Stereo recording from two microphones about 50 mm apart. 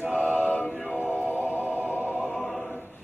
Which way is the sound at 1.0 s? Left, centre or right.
Left.